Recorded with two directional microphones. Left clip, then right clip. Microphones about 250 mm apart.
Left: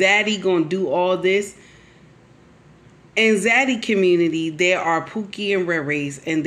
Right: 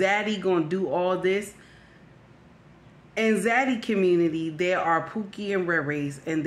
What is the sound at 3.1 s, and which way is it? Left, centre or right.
Speech, centre.